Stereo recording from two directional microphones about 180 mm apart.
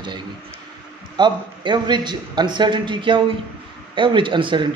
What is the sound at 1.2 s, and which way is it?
Speech, 25° right (ahead or behind).